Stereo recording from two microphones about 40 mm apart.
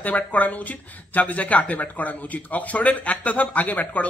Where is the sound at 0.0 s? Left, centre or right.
Left.